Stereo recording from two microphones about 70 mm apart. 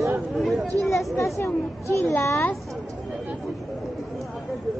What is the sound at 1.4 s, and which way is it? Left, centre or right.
Speech, left.